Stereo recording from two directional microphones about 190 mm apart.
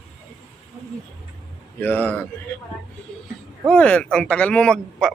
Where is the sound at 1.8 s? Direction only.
10° left (ahead or behind).